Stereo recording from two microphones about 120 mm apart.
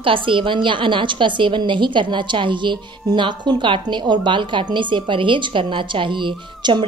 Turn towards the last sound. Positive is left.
turn(degrees=-45)  # may be behind; listen again after turning